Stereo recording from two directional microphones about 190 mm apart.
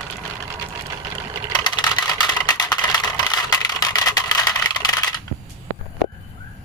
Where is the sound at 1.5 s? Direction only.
20° left (ahead or behind).